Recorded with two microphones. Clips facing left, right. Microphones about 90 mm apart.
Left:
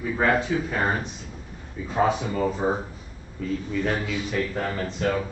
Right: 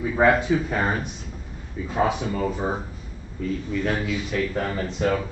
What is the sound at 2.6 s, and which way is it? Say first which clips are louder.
Speech: left 5 dB; 5° left (ahead or behind).